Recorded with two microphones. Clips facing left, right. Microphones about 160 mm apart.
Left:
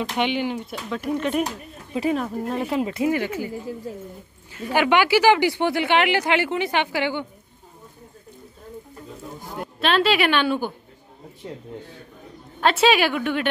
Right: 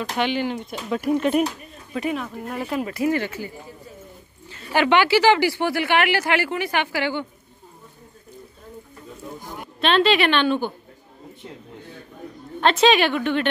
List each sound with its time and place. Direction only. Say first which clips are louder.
0.2 s a woman's voice: right 1 dB; 15° left (ahead or behind)
0.8 s speech: right 4 dB; 10° right (ahead or behind)
2.0 s a woman's voice: left 3 dB; 30° left (ahead or behind)
9.8 s a woman's voice: right 2 dB; 5° left (ahead or behind)
12.5 s a woman's voice: right 1 dB; 5° left (ahead or behind)